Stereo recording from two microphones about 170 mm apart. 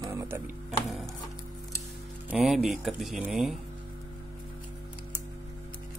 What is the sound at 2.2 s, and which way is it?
Speech, 5° right (ahead or behind).